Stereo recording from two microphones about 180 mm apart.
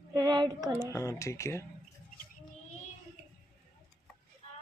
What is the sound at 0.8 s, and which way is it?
Speech, 15° left (ahead or behind).